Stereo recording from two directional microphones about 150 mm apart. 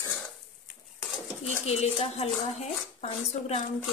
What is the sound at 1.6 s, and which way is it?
Speech, 45° left (ahead or behind).